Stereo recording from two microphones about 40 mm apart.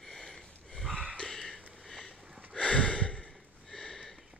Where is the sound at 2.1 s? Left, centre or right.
Right.